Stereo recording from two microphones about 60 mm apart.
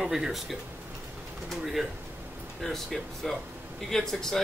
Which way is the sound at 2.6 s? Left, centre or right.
Centre.